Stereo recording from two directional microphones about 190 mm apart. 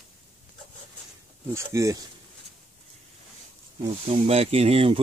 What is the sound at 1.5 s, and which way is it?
Speech, 15° right (ahead or behind).